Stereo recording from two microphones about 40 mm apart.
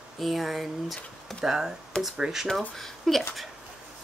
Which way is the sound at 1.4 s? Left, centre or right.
Centre.